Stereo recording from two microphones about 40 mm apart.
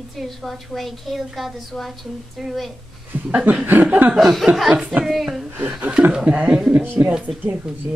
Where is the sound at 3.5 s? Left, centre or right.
Right.